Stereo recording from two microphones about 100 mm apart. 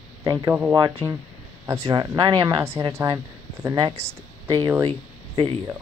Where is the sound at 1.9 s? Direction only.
40° right (ahead or behind).